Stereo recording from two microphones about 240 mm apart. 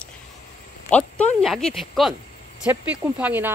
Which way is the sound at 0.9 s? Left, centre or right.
Centre.